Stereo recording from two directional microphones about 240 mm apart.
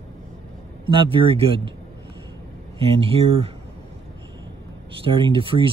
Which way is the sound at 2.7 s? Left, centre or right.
Right.